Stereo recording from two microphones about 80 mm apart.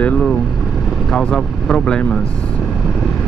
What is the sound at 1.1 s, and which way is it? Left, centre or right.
Speech, centre.